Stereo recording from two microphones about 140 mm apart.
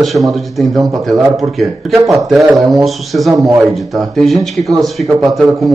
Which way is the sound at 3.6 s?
Centre (ahead or behind).